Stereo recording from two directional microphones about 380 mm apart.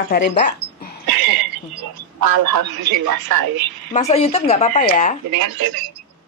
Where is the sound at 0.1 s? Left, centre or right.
Left.